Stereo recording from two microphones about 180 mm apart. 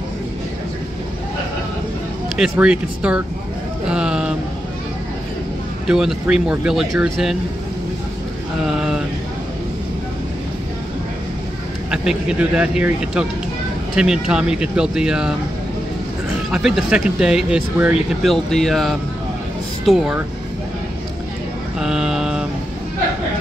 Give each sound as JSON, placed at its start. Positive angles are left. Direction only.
{"t": 2.3, "sound": "speech", "side_deg": -5}
{"t": 3.8, "sound": "a sound", "side_deg": -5}
{"t": 5.9, "sound": "speech", "side_deg": -5}
{"t": 11.9, "sound": "speech", "side_deg": -5}
{"t": 16.4, "sound": "speech", "side_deg": 0}
{"t": 21.7, "sound": "mantra", "side_deg": -5}